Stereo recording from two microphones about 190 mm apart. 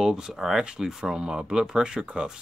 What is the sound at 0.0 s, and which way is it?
Speech, 5° right (ahead or behind).